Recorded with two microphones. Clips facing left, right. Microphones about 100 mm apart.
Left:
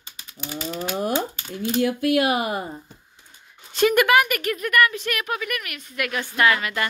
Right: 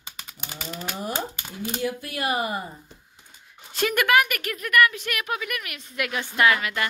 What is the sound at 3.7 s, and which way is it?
Speech, centre (ahead or behind).